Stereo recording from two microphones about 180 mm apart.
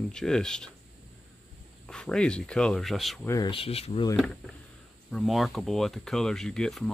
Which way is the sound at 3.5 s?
35° left (ahead or behind).